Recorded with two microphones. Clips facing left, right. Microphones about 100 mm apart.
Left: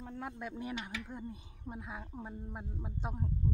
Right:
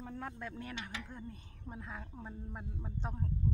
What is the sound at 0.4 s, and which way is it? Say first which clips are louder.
Speech: left 3 dB; 15° left (ahead or behind).